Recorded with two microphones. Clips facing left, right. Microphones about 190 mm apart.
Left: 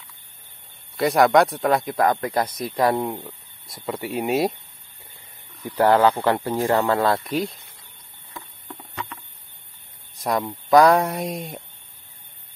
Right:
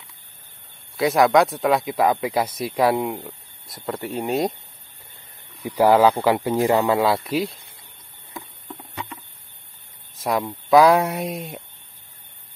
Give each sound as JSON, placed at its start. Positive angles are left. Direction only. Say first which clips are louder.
{"t": 0.9, "sound": "speech", "louder": "even", "side_deg": 0}
{"t": 5.6, "sound": "a man's voice", "louder": "right 2 dB", "side_deg": -10}
{"t": 8.3, "sound": "patter", "louder": "right 2 dB", "side_deg": -15}
{"t": 10.1, "sound": "a sound", "louder": "right 1 dB", "side_deg": -5}
{"t": 10.4, "sound": "speech", "louder": "right 1 dB", "side_deg": 0}